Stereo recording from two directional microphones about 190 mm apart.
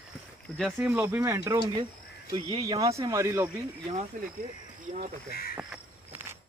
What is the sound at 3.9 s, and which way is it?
Speech, 40° right (ahead or behind).